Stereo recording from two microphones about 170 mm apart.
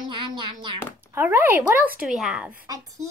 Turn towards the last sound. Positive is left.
turn(degrees=-20)  # may be behind; listen again after turning